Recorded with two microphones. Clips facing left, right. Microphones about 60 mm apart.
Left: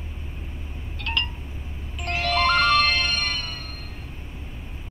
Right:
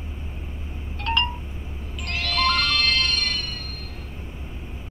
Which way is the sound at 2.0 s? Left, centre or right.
Left.